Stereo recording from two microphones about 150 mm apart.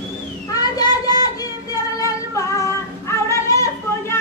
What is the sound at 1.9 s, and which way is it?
Female singing, 20° left (ahead or behind).